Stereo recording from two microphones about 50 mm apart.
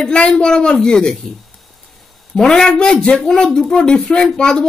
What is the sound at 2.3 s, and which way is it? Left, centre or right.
A woman's voice, centre.